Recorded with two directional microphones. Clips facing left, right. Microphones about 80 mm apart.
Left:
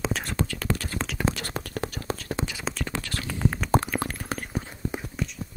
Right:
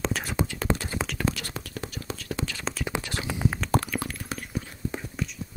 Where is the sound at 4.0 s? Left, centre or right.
Left.